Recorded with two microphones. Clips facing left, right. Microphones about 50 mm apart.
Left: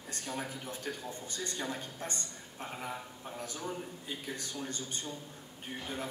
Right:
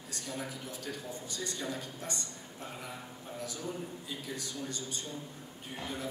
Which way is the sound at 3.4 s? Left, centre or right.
Left.